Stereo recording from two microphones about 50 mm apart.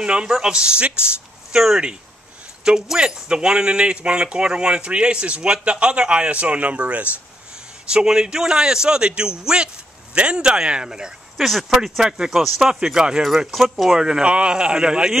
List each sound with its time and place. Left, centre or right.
0.0 s speech: centre
2.6 s speech: centre
7.9 s speech: centre
11.4 s speech: centre
12.8 s speech: centre
13.3 s speech: centre
13.9 s speech: centre